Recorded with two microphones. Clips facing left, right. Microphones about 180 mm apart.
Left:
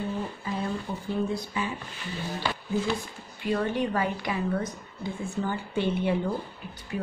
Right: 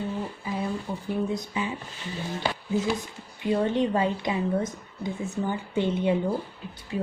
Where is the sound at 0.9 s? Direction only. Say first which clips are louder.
Right 1 dB; 10° right (ahead or behind).